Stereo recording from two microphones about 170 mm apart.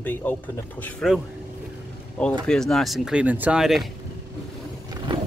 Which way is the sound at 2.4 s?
5° left (ahead or behind).